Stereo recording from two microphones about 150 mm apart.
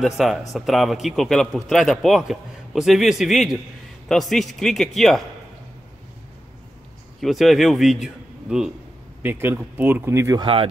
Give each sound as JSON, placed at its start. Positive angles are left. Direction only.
{"t": 0.0, "sound": "a man's voice", "side_deg": 0}
{"t": 7.2, "sound": "a man's voice", "side_deg": 0}
{"t": 10.4, "sound": "speech", "side_deg": -35}